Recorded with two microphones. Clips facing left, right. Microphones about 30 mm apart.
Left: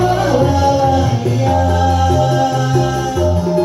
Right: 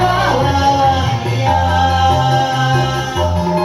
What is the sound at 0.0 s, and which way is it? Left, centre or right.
Music, right.